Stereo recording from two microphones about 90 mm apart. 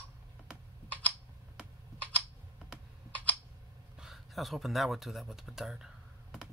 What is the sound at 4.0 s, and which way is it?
Speech, centre (ahead or behind).